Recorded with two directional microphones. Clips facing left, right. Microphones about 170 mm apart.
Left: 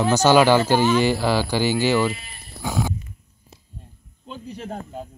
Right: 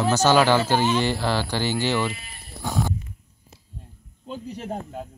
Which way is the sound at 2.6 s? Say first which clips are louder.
Left 1 dB; centre (ahead or behind).